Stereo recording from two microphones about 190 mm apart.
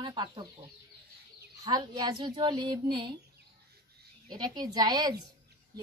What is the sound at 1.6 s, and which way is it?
Speech, 20° right (ahead or behind).